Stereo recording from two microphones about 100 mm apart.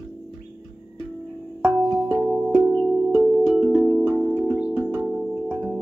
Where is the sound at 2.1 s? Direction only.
20° right (ahead or behind).